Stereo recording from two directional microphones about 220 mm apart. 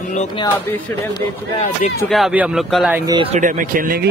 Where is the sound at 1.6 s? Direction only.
30° left (ahead or behind).